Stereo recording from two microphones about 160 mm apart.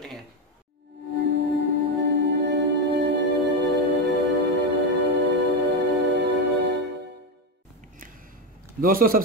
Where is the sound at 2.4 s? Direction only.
90° right.